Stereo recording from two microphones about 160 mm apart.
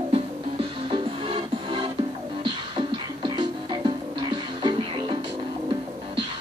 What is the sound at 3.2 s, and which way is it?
Music, 30° right (ahead or behind).